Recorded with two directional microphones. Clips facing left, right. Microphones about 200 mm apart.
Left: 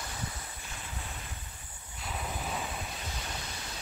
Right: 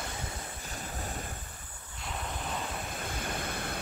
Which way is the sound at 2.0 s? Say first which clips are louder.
Even; 5° left (ahead or behind).